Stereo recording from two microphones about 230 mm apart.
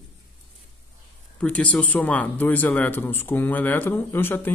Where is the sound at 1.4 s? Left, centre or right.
Centre.